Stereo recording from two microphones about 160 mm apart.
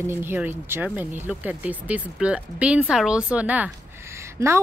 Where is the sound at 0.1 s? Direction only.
15° right (ahead or behind).